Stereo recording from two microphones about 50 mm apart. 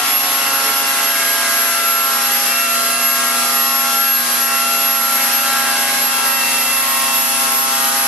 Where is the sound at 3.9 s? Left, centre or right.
Centre.